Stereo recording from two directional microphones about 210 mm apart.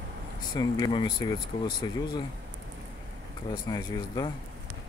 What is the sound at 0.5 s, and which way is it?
Speech, 20° left (ahead or behind).